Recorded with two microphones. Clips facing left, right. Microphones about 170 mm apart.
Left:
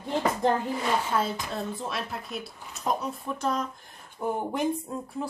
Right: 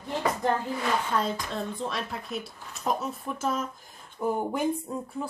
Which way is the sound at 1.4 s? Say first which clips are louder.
Right 1 dB; 5° left (ahead or behind).